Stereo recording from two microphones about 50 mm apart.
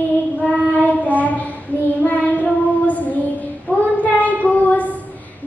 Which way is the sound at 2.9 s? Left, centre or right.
Left.